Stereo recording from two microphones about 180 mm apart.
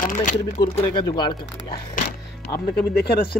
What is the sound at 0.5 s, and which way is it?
Speech, 25° left (ahead or behind).